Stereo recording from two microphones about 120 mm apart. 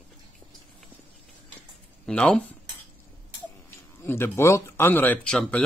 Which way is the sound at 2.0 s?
5° left (ahead or behind).